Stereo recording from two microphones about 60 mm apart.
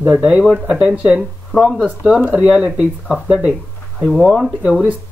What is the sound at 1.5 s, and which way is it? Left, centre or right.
Speech, centre.